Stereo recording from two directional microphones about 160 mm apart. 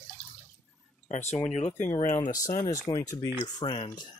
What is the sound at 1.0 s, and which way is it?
Speech, 45° left (ahead or behind).